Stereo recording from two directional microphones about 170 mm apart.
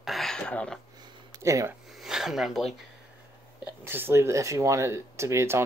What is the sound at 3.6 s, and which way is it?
Speech, 10° right (ahead or behind).